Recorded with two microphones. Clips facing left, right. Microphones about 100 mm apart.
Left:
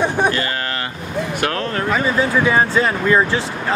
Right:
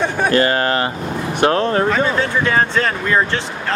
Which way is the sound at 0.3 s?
40° right (ahead or behind).